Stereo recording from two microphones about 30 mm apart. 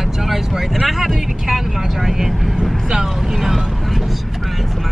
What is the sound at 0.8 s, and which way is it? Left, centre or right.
Speech, centre.